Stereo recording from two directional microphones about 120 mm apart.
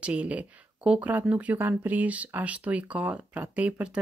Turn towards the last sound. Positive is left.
turn(degrees=-10)  # may be behind; listen again after turning